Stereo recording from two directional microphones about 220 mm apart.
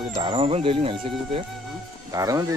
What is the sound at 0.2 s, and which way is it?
Speech, 25° right (ahead or behind).